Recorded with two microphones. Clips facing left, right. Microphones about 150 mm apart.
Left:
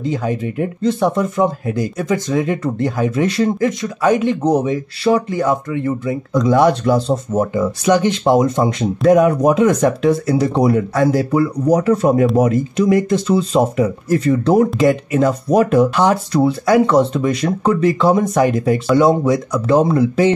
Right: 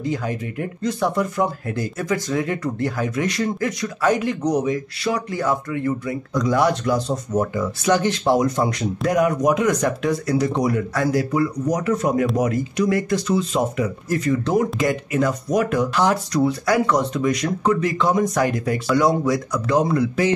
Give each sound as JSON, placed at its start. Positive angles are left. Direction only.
{"t": 0.0, "sound": "speech", "side_deg": 25}